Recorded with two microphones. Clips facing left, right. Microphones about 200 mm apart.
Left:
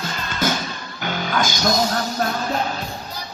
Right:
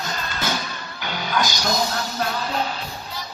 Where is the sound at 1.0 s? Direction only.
50° left (ahead or behind).